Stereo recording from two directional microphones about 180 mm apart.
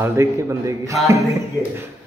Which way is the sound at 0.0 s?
15° right (ahead or behind).